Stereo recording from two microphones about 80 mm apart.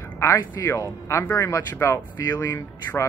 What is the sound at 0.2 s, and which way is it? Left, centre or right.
Speech, left.